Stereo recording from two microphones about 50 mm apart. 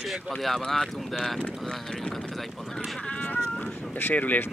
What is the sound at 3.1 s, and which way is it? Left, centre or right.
Cat, left.